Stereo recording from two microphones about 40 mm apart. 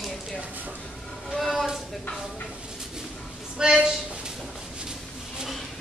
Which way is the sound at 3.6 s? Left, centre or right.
Right.